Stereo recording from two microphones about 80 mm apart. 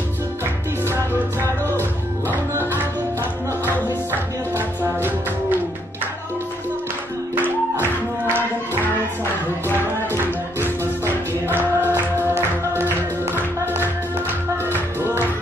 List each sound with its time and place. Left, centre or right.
1.7 s music: left
2.5 s music: right
4.6 s music: right
7.8 s music: left
11.4 s music: right